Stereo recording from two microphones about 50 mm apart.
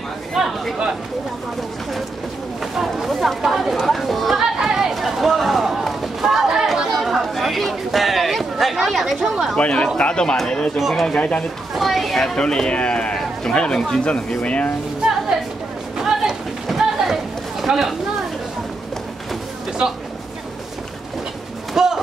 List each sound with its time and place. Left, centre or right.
0.3 s a sound: centre
2.6 s speech: centre
4.6 s a sound: centre
6.9 s chatter: centre
9.6 s speech: left
10.8 s speech: centre
11.1 s speech: left
11.7 s speech: centre
12.4 s speech: centre
14.4 s speech: left
15.0 s a sound: centre
19.8 s speech: centre
21.7 s a sound: centre